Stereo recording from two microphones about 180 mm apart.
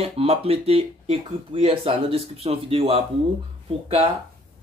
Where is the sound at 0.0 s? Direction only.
35° right (ahead or behind).